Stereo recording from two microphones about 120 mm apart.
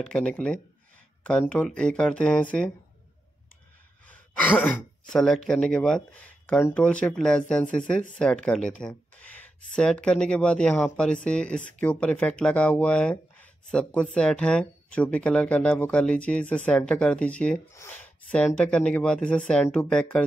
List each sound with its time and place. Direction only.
0.0 s speech: 5° left (ahead or behind)
4.6 s speech: 10° left (ahead or behind)
17.7 s speech: 20° left (ahead or behind)
18.3 s speech: 10° left (ahead or behind)